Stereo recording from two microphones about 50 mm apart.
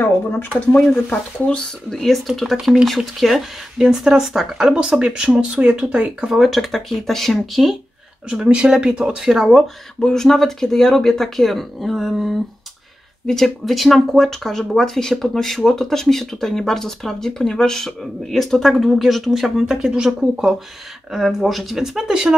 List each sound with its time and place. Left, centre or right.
0.0 s speech: left
1.9 s speech: centre; by 6.1 s right
6.3 s speech: centre
8.3 s speech: centre
9.5 s speech: centre